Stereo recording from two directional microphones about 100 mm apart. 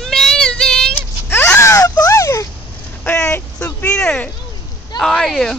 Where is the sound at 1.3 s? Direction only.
20° left (ahead or behind).